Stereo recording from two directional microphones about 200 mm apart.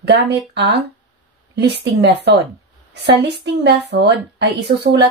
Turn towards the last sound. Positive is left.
turn(degrees=-60)  # may be behind; listen again after turning